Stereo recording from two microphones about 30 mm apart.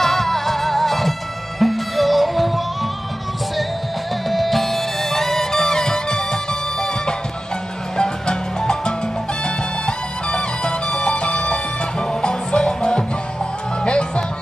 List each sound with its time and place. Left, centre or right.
0.0 s music: centre
4.3 s music: centre; by 13.0 s left
13.8 s music: left